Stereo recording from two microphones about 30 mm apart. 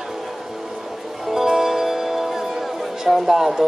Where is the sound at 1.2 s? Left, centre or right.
Centre.